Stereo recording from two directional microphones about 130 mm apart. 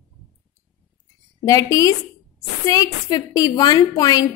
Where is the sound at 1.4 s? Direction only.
25° left (ahead or behind).